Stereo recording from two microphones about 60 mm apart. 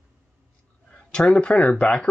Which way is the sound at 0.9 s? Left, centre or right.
Centre.